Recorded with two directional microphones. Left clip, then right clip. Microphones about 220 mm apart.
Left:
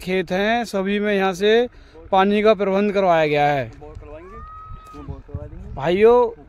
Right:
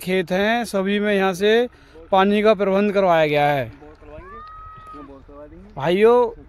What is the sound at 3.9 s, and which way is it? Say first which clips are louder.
Police car: left 2 dB; 40° left (ahead or behind).